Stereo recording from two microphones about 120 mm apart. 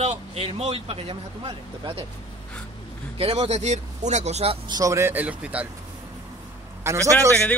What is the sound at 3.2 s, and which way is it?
Speech, 60° right (ahead or behind).